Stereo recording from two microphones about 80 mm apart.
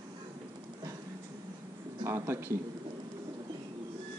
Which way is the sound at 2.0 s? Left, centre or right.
Right.